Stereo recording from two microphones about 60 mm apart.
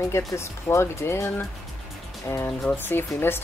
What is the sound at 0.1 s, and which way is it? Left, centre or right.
Speech, left.